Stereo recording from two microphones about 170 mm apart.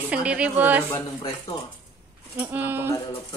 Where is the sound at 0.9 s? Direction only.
15° left (ahead or behind).